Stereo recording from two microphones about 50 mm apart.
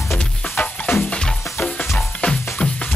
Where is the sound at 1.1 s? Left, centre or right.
Centre.